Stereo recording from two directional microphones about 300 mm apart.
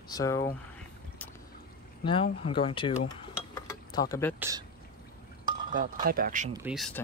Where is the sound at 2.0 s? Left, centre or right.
Centre.